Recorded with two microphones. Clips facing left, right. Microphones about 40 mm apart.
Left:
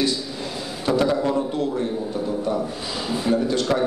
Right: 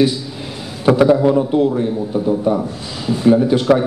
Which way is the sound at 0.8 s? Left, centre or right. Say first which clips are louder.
Right 9 dB; right.